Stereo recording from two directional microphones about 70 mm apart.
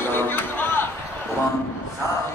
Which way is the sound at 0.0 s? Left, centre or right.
Left.